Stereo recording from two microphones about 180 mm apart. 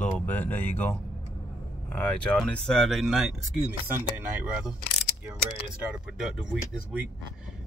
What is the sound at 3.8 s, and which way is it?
Speech, 10° right (ahead or behind).